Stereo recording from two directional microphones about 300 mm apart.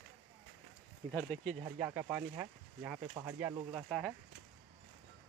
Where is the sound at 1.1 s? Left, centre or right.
Centre.